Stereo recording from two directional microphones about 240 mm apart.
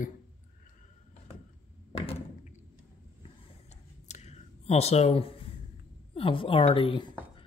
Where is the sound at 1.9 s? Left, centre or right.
Left.